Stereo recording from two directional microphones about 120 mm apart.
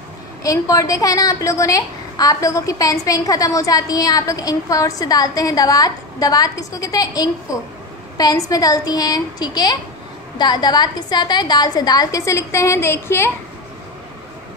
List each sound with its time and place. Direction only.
0.4 s a woman's voice: 30° left (ahead or behind)